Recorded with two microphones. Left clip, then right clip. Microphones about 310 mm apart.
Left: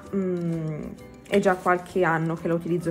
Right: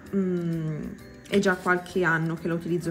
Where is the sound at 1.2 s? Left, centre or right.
Centre.